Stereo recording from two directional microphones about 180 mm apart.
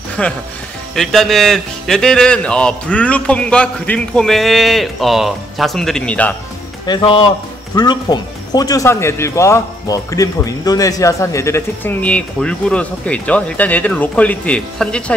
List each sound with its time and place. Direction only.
0.2 s a man's voice: 5° left (ahead or behind)
6.9 s speech: 25° left (ahead or behind); by 15.1 s 5° left (ahead or behind)